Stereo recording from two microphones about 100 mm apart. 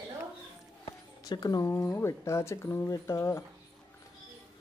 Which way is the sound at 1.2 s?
40° left (ahead or behind).